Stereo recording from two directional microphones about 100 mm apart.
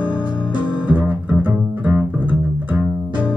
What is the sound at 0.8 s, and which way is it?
Music, 15° right (ahead or behind).